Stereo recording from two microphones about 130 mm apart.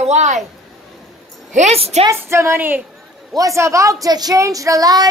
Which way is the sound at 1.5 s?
60° right (ahead or behind).